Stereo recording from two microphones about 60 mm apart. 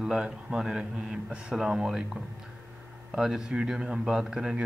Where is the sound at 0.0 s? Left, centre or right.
Centre.